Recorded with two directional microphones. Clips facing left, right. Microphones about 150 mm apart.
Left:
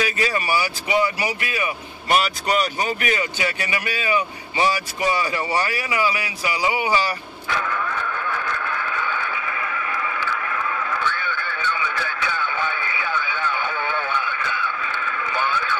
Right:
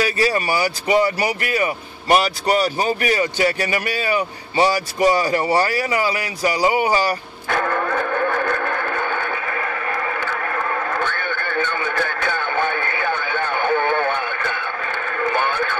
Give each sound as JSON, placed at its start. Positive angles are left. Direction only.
{"t": 0.0, "sound": "music", "side_deg": -35}